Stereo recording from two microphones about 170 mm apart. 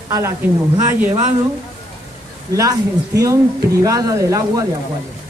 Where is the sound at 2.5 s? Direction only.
20° right (ahead or behind).